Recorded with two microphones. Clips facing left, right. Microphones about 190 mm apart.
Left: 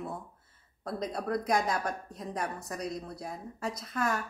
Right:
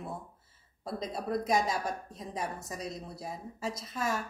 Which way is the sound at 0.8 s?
5° right (ahead or behind).